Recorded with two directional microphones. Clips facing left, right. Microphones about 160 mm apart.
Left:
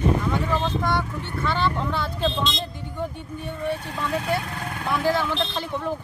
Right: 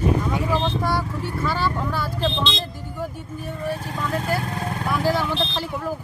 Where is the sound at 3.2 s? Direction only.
25° left (ahead or behind).